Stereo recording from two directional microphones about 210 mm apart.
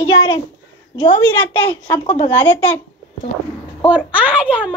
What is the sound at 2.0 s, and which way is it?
Speech, 25° left (ahead or behind).